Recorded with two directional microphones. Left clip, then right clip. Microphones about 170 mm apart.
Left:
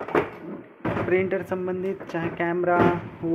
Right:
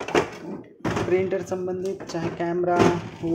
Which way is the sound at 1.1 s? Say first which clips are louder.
Even; 10° right (ahead or behind).